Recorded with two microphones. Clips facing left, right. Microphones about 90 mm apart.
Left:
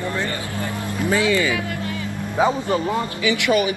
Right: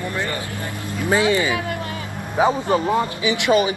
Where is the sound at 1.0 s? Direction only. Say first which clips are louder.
Right 1 dB; 25° right (ahead or behind).